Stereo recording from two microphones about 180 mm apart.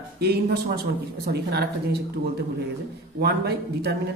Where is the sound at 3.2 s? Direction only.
65° right (ahead or behind).